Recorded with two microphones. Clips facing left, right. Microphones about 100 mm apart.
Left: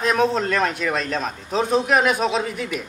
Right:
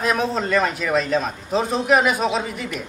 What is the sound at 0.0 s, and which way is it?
A man's voice, centre (ahead or behind).